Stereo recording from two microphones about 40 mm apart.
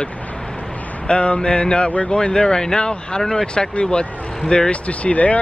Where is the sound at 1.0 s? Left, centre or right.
Left.